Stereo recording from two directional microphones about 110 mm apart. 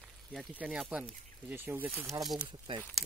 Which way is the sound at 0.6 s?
10° right (ahead or behind).